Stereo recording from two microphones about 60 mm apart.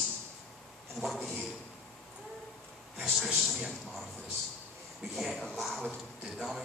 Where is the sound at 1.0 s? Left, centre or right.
Centre.